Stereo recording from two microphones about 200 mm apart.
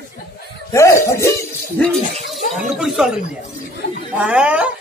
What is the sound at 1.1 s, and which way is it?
Music, 15° left (ahead or behind).